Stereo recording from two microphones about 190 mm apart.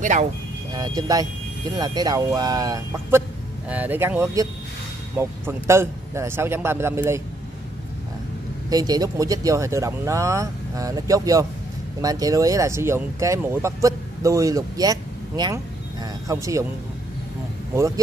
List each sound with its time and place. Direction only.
0.0 s speech: 40° right (ahead or behind)
0.7 s speech: 20° right (ahead or behind)
8.6 s speech: 20° right (ahead or behind)